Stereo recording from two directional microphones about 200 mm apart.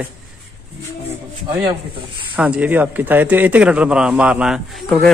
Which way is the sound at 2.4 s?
5° right (ahead or behind).